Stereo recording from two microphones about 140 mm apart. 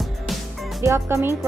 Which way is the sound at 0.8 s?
20° right (ahead or behind).